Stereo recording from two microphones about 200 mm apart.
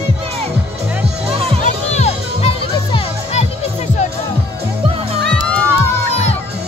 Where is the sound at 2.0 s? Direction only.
30° left (ahead or behind).